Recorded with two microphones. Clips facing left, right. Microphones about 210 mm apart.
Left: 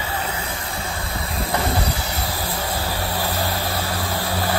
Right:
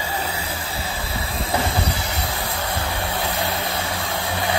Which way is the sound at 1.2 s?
Centre (ahead or behind).